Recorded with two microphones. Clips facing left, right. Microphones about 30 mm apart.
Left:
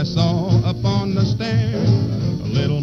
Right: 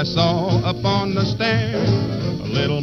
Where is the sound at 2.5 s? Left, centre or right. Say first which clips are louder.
Right 2 dB; right.